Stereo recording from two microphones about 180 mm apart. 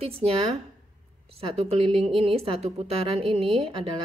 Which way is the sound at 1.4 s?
35° right (ahead or behind).